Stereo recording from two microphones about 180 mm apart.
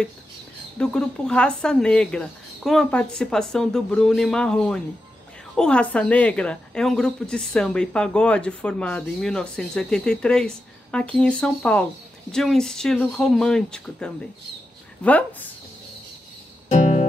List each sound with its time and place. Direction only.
0.7 s a woman's voice: 5° left (ahead or behind)
16.6 s music: 40° left (ahead or behind)